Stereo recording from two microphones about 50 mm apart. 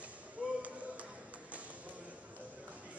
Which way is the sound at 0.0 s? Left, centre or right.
Right.